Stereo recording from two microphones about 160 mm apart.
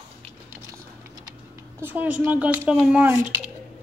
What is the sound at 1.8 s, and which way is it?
Speech, 10° right (ahead or behind).